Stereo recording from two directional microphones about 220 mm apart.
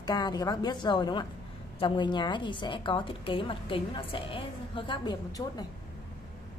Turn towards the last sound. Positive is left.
turn(degrees=15)  # may be behind; listen again after turning